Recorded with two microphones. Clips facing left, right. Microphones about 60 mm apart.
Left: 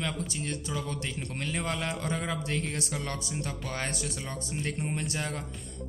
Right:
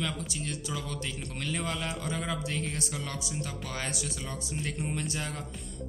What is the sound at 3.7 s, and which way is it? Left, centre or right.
Speech, left.